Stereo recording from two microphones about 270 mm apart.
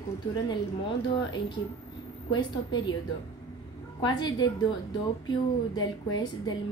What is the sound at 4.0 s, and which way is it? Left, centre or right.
Speech, centre.